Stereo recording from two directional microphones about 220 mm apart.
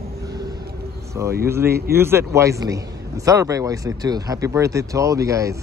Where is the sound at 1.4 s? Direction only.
10° right (ahead or behind).